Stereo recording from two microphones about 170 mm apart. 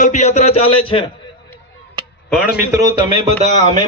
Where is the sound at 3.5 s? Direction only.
40° right (ahead or behind).